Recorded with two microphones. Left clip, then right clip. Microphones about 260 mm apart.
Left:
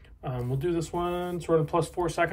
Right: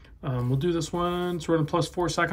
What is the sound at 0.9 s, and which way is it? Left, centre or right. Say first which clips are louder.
Speech: right 2 dB; right.